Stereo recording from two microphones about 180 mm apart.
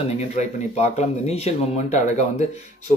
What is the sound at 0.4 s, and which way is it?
Speech, 40° left (ahead or behind).